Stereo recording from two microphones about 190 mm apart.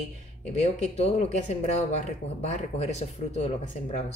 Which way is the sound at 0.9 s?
35° left (ahead or behind).